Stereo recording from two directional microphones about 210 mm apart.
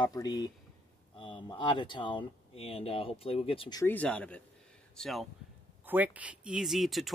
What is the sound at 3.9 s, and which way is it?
Speech, 5° left (ahead or behind).